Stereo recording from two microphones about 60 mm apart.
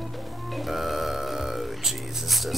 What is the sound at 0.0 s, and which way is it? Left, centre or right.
Speech, centre.